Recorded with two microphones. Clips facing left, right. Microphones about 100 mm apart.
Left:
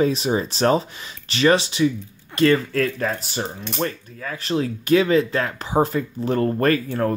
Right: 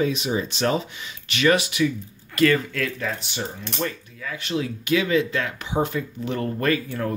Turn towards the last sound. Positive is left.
turn(degrees=40)  # may be behind; listen again after turning